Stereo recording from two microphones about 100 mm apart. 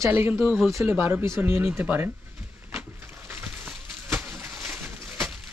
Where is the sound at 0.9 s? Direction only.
20° right (ahead or behind).